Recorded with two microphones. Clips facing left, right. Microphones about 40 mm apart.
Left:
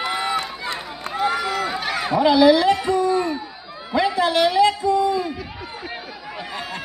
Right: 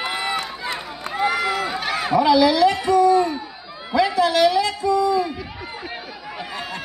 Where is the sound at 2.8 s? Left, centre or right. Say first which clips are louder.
Right 4 dB; left.